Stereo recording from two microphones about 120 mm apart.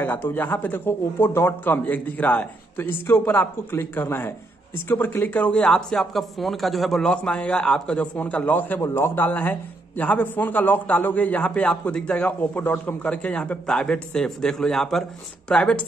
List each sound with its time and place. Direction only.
0.0 s speech: 15° left (ahead or behind)